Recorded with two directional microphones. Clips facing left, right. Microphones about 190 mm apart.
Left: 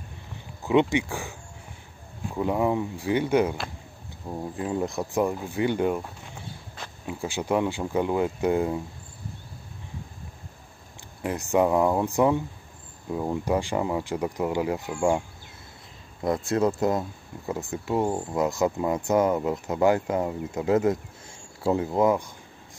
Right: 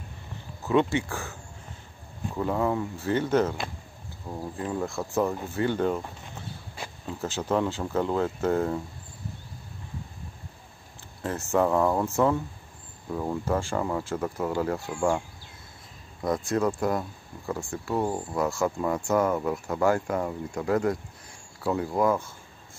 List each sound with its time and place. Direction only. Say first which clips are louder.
0.6 s speech: left 2 dB; 15° left (ahead or behind)
2.3 s speech: left 2 dB; 15° left (ahead or behind)
11.2 s speech: left 2 dB; 15° left (ahead or behind)